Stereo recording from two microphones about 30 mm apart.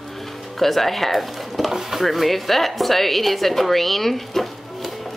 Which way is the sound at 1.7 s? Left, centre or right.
Centre.